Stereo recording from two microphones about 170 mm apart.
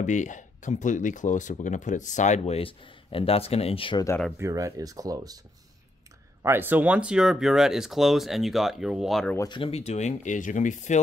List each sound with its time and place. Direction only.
0.0 s speech: 45° left (ahead or behind)
4.4 s speech: 20° right (ahead or behind)
6.4 s speech: 10° right (ahead or behind)
9.5 s speech: 35° left (ahead or behind)